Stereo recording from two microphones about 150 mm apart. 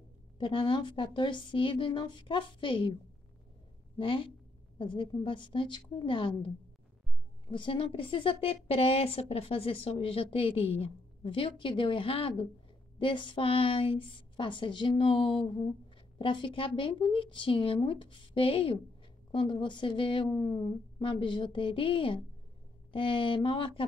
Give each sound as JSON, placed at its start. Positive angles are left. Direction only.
{"t": 0.4, "sound": "a woman's voice", "side_deg": 35}
{"t": 4.0, "sound": "a woman's voice", "side_deg": 35}